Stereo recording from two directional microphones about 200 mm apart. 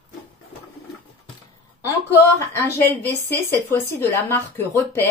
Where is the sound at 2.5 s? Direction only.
10° left (ahead or behind).